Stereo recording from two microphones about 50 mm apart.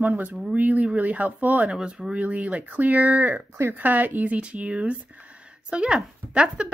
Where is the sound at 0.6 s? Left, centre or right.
Right.